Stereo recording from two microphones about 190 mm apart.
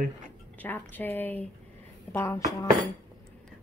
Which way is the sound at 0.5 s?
10° left (ahead or behind).